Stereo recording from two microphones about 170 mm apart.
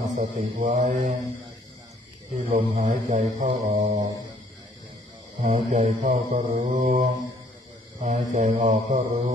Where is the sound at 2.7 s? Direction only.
50° right (ahead or behind).